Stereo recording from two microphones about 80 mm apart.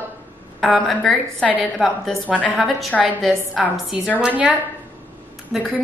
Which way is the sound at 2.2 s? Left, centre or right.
Centre.